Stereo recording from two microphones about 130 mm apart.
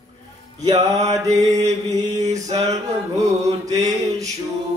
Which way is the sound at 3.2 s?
25° right (ahead or behind).